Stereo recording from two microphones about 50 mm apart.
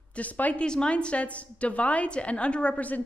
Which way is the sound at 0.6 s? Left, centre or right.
Centre.